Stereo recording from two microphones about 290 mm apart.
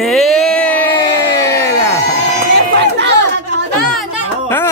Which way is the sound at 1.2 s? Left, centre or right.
Centre.